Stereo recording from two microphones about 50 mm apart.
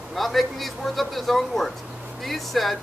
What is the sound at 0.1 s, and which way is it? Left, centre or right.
Speech, centre.